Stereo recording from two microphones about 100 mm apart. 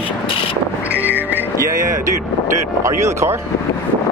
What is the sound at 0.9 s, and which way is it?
Vehicle, 15° right (ahead or behind).